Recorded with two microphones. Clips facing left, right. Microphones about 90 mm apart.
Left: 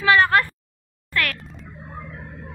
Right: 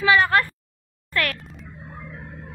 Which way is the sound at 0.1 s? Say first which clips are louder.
Left 2 dB; 30° left (ahead or behind).